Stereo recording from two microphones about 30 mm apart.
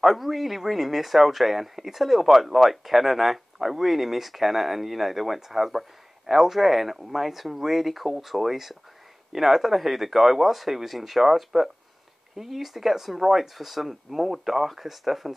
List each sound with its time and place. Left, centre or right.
0.0 s speech: centre